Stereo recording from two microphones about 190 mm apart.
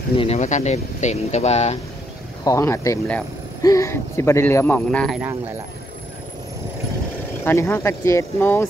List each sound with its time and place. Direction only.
0.1 s speech: 30° left (ahead or behind)
2.4 s speech: 15° left (ahead or behind)
7.4 s speech: 15° left (ahead or behind)